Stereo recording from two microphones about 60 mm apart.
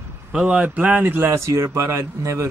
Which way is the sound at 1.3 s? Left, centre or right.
Right.